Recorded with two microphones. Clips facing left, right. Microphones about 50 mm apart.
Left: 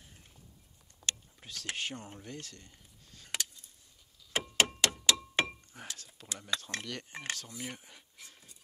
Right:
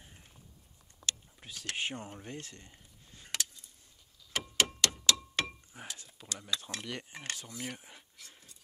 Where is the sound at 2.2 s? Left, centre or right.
Right.